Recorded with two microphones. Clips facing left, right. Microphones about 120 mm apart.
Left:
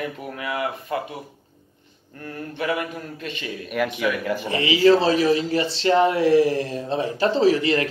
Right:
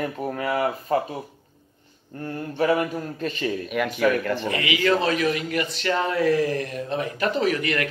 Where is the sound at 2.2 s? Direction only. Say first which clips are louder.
Right 4 dB; 35° right (ahead or behind).